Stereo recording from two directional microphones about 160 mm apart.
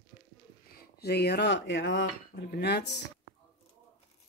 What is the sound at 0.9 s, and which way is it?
Speech, 85° left.